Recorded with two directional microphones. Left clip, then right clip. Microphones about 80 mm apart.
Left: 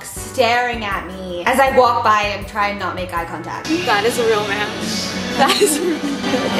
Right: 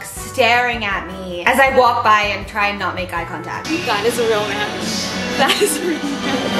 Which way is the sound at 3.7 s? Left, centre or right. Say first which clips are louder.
Left 2 dB; left.